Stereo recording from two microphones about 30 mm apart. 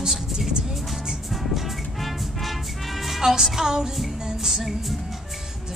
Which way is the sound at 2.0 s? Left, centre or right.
Centre.